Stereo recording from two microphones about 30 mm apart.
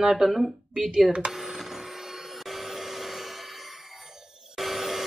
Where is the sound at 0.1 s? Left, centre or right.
Centre.